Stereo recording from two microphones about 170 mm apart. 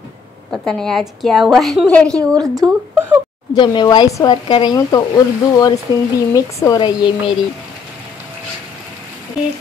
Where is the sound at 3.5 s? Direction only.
25° left (ahead or behind).